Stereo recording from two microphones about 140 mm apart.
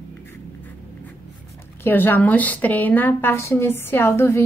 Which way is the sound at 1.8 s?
15° left (ahead or behind).